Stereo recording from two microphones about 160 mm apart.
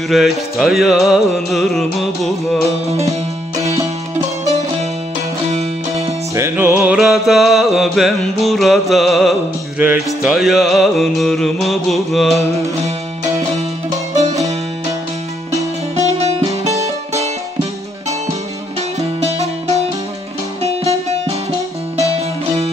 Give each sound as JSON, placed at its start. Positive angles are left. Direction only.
{"t": 0.1, "sound": "music", "side_deg": 0}
{"t": 5.5, "sound": "music", "side_deg": -40}
{"t": 6.3, "sound": "music", "side_deg": -15}
{"t": 14.1, "sound": "music", "side_deg": -45}
{"t": 16.0, "sound": "music", "side_deg": -45}